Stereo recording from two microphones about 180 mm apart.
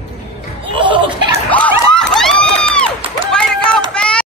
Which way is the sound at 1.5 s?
10° left (ahead or behind).